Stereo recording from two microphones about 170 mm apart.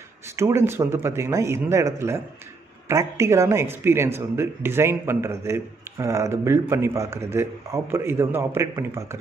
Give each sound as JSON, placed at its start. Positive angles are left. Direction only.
{"t": 0.4, "sound": "speech", "side_deg": -15}